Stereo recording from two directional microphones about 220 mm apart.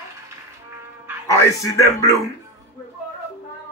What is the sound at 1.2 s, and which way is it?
Speech, 15° left (ahead or behind).